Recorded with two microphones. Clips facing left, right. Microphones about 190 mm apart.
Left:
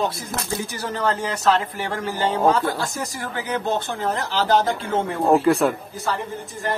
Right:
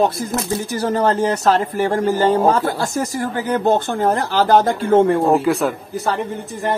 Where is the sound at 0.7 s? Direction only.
45° right (ahead or behind).